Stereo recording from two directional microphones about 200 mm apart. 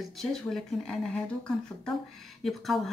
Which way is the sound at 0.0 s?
Centre (ahead or behind).